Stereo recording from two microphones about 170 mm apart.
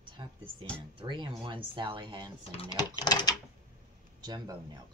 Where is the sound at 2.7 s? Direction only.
25° left (ahead or behind).